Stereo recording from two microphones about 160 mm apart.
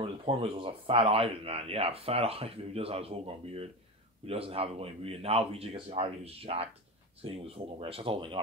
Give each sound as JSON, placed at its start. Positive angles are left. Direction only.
{"t": 0.0, "sound": "a man's voice", "side_deg": -35}